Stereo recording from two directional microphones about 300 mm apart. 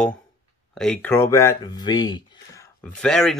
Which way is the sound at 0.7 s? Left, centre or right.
Centre.